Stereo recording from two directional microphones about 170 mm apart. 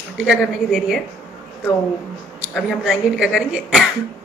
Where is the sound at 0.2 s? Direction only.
Centre (ahead or behind).